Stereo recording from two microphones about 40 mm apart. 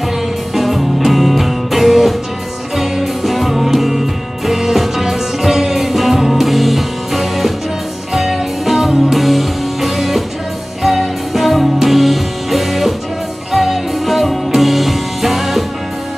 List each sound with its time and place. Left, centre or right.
0.6 s music: centre